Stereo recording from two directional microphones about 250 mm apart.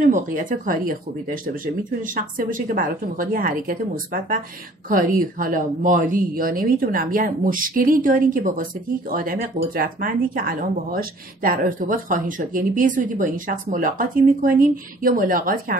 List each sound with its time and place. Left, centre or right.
0.0 s speech: right